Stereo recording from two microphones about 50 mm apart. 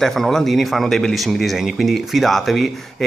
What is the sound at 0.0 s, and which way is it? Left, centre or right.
Speech, centre.